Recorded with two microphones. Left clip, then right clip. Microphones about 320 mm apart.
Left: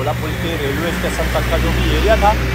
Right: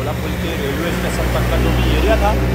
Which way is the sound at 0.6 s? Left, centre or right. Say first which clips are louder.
Left 1 dB; centre.